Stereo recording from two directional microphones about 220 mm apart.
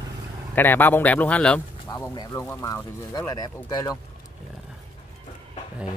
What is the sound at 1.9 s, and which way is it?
Speech, 15° left (ahead or behind).